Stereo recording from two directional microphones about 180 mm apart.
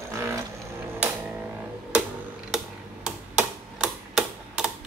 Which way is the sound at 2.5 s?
5° right (ahead or behind).